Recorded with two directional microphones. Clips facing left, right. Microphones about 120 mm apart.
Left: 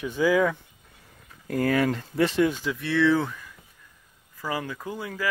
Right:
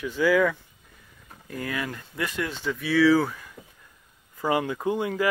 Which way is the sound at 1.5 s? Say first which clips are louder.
Left 8 dB; 35° left (ahead or behind).